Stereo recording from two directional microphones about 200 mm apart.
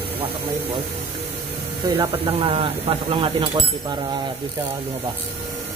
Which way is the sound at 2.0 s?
30° right (ahead or behind).